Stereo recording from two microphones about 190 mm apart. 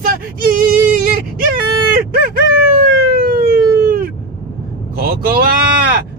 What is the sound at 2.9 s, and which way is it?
Emergency vehicle, 55° right (ahead or behind).